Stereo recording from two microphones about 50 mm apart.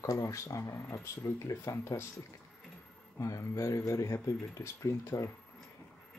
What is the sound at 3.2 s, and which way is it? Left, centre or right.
Speech, left.